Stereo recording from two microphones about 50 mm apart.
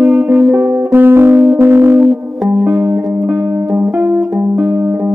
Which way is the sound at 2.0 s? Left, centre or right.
Right.